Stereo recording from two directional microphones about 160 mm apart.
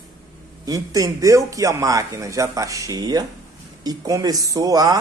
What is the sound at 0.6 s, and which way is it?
A man's voice, 20° right (ahead or behind).